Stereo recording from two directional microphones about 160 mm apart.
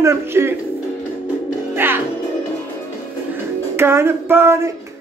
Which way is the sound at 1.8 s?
15° right (ahead or behind).